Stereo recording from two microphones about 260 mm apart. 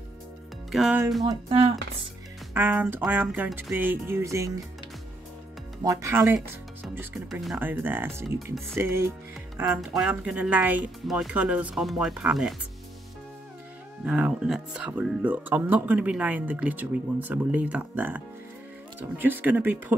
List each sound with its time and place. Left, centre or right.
0.7 s speech: centre
1.2 s speech: centre
2.5 s speech: centre
5.9 s speech: centre
14.0 s speech: centre